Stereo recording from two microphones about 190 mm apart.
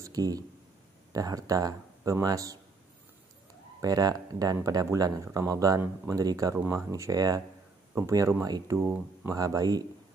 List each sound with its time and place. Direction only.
0.0 s a sound: 20° right (ahead or behind)
1.1 s speech: 20° right (ahead or behind)
3.8 s speech: 20° right (ahead or behind)